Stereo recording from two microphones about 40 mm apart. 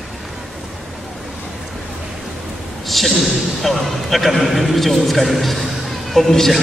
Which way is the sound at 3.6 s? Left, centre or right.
Centre.